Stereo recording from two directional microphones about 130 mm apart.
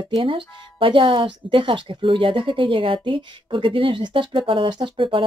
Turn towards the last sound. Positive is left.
turn(degrees=-40)  # may be behind; listen again after turning